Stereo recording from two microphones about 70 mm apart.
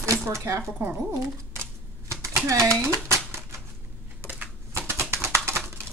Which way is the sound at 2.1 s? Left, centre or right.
Right.